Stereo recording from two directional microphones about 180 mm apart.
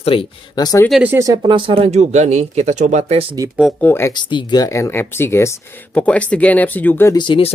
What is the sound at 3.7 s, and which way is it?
Speech, 10° left (ahead or behind).